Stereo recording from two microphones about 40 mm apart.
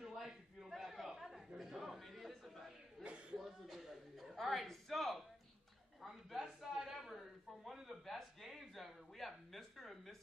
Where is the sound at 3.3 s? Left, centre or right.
Centre.